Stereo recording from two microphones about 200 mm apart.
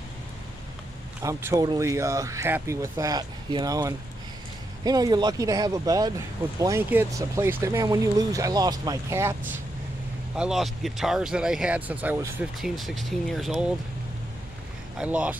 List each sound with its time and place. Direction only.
1.2 s speech: 15° right (ahead or behind)
15.0 s speech: 5° right (ahead or behind)